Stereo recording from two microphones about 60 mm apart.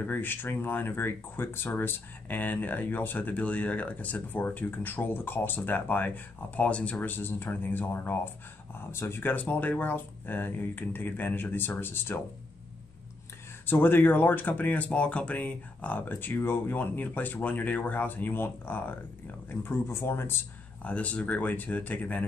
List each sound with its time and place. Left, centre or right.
0.0 s speech: left
13.7 s speech: left
20.8 s speech: left